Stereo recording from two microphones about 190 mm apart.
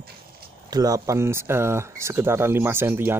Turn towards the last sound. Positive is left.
turn(degrees=-10)  # may be behind; listen again after turning